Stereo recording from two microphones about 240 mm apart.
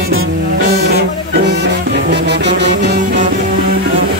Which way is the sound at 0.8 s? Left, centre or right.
Right.